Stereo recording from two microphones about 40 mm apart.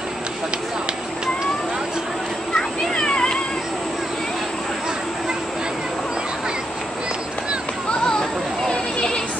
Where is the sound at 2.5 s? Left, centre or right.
Centre.